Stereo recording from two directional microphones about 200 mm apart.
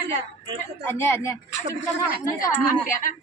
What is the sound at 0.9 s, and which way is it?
Speech, 10° left (ahead or behind).